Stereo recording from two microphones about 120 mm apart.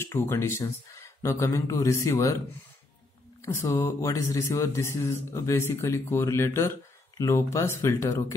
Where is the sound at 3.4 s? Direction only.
25° left (ahead or behind).